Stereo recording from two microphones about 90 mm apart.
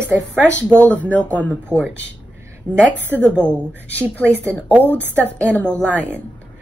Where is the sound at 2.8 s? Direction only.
15° left (ahead or behind).